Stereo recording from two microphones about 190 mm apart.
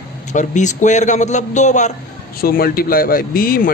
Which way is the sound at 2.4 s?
50° left (ahead or behind).